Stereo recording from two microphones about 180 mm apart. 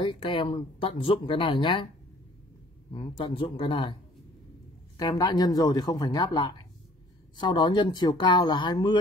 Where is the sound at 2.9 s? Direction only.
30° left (ahead or behind).